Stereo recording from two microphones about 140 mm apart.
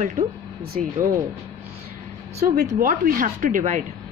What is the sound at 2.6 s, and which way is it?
Speech, 85° right.